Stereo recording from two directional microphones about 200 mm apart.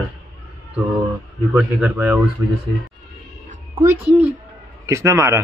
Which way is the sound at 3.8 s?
10° right (ahead or behind).